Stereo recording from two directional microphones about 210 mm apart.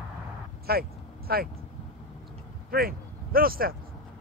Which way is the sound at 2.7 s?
45° right (ahead or behind).